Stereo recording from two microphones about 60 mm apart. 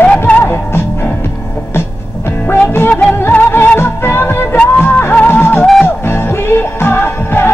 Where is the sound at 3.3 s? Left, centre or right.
Left.